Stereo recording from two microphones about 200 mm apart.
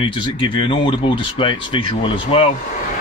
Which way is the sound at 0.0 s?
25° left (ahead or behind).